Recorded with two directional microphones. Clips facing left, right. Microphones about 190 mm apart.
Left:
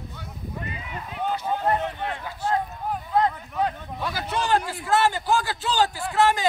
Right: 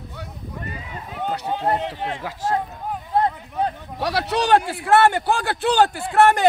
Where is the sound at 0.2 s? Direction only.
75° right (ahead or behind).